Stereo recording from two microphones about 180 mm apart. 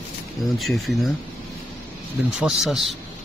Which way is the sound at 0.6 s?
Centre (ahead or behind).